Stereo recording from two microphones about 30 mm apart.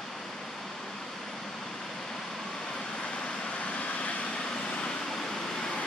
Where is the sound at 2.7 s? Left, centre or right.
Left.